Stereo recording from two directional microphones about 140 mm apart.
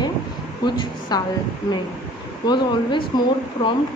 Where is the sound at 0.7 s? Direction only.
30° left (ahead or behind).